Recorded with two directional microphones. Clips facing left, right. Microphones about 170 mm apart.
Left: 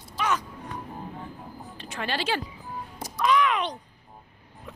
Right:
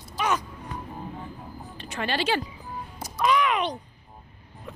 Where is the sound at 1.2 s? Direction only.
Centre (ahead or behind).